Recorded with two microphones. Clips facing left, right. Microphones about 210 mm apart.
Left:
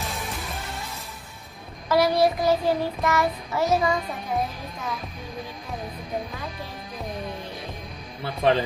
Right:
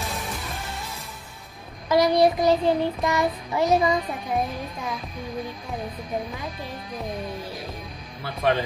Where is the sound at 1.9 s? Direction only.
15° right (ahead or behind).